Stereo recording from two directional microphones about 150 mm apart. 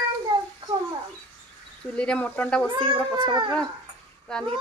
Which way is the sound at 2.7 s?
30° right (ahead or behind).